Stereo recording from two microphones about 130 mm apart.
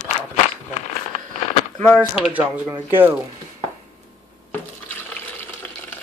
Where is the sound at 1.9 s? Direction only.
Centre (ahead or behind).